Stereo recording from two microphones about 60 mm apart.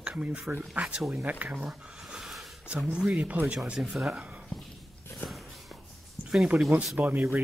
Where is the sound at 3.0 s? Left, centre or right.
Centre.